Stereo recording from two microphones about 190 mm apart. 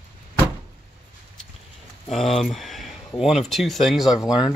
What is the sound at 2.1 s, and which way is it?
Speech, centre (ahead or behind).